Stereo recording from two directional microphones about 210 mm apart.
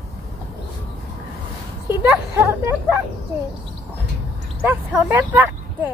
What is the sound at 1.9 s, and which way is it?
Speech, 10° right (ahead or behind).